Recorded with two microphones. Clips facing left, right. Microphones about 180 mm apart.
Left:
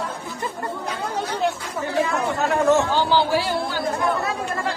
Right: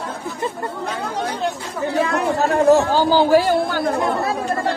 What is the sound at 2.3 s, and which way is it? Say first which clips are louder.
Speech: right 4 dB; 35° right (ahead or behind).